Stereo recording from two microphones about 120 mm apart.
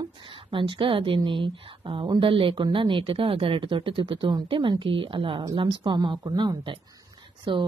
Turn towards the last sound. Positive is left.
turn(degrees=-45)  # may be behind; listen again after turning